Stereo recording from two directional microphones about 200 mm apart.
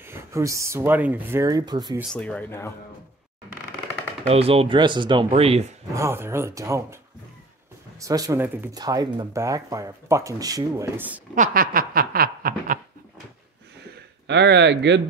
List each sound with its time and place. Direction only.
0.0 s speech: 15° right (ahead or behind)
2.0 s speech: 5° left (ahead or behind)
4.3 s speech: 30° right (ahead or behind)
5.9 s speech: 10° right (ahead or behind)
8.0 s speech: 15° right (ahead or behind)
11.3 s speech: 40° right (ahead or behind)
14.2 s speech: 60° right (ahead or behind)